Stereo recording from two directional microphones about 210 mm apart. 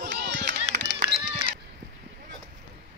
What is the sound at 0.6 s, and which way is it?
Run, 30° right (ahead or behind).